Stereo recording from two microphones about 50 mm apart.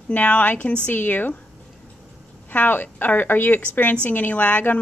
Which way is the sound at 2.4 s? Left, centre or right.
Left.